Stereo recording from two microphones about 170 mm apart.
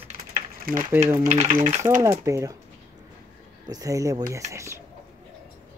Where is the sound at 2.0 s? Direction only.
15° right (ahead or behind).